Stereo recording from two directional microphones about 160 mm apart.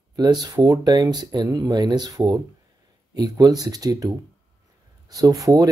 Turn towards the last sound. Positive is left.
turn(degrees=-20)  # may be behind; listen again after turning